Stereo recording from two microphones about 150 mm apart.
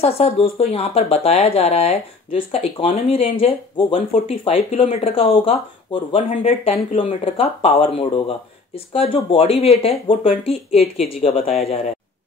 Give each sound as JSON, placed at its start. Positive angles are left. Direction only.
{"t": 0.0, "sound": "speech", "side_deg": 40}